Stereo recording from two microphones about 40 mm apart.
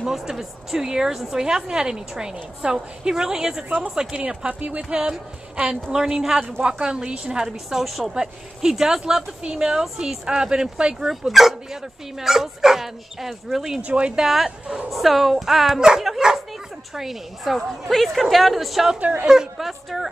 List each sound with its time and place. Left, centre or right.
0.0 s a woman's voice: centre
4.5 s speech: right
4.8 s a woman's voice: right
7.4 s a woman's voice: centre
8.1 s speech: centre
11.1 s a woman's voice: centre
13.7 s speech: right
14.1 s a woman's voice: centre
16.2 s dog: centre
16.9 s a woman's voice: centre
19.2 s a woman's voice: centre